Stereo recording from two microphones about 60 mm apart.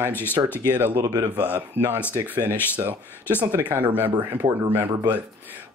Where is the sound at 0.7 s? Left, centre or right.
Right.